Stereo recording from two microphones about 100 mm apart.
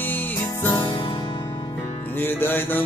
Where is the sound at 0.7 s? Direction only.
50° left (ahead or behind).